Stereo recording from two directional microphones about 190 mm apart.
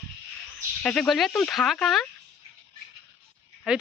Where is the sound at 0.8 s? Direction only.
5° left (ahead or behind).